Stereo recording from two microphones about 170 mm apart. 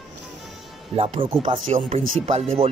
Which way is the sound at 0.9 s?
35° right (ahead or behind).